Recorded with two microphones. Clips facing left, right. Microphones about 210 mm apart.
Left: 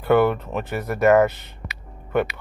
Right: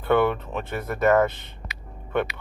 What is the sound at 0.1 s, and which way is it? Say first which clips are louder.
Speech: left 3 dB; 5° left (ahead or behind).